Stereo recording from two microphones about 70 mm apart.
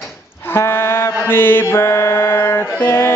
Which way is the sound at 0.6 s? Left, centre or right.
Left.